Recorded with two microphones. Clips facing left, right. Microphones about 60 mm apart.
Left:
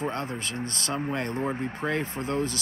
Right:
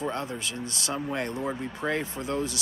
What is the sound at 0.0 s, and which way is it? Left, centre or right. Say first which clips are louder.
Speech: left 1 dB; left.